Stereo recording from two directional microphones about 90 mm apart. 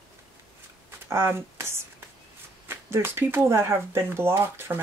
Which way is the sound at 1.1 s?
30° right (ahead or behind).